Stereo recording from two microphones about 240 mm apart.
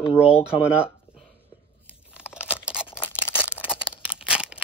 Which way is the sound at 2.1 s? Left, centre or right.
Centre.